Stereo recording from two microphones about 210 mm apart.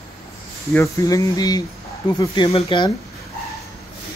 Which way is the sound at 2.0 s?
20° left (ahead or behind).